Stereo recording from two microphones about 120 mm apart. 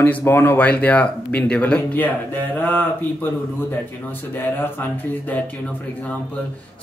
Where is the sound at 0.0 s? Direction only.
20° left (ahead or behind).